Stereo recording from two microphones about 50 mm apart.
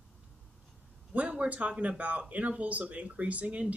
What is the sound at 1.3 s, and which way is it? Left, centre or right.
Speech, right.